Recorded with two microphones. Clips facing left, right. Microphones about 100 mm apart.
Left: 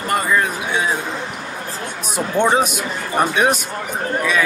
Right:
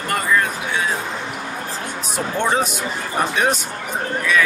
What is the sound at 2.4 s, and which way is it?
Speech, 15° left (ahead or behind).